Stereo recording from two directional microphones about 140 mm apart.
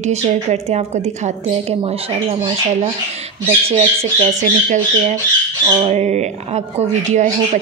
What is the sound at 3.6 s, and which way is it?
A woman's voice, 45° right (ahead or behind).